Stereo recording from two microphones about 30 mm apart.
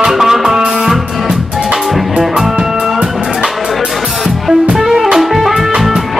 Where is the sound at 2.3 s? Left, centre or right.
Right.